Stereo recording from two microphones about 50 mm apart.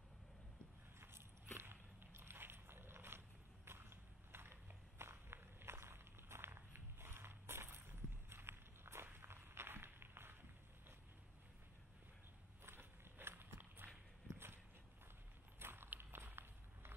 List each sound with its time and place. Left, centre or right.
1.0 s walk: right
12.6 s walk: right
15.6 s walk: right